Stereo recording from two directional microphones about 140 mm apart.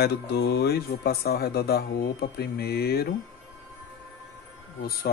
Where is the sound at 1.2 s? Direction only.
90° left.